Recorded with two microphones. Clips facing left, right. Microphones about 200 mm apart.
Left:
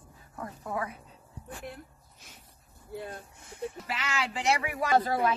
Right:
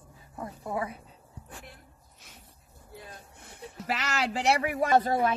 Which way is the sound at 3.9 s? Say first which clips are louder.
Right 6 dB; 40° right (ahead or behind).